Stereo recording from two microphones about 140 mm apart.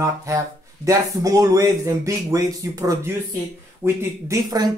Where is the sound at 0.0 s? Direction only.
20° right (ahead or behind).